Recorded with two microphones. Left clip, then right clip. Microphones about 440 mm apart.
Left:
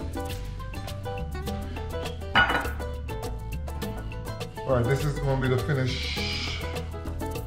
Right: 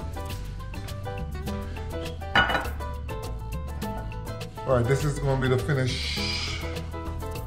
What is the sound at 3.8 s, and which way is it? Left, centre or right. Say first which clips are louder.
Music: right 2 dB; left.